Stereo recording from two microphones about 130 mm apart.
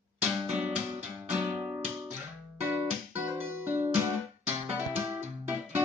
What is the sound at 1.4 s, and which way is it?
Guitar, 15° right (ahead or behind).